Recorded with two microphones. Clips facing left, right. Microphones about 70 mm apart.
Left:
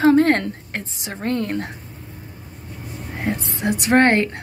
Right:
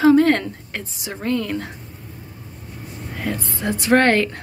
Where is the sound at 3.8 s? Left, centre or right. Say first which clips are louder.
Even; left.